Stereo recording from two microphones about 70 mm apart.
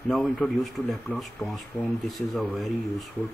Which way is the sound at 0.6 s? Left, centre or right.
Centre.